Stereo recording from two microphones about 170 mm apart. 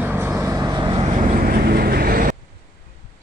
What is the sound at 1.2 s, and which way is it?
Vehicle, 55° right (ahead or behind).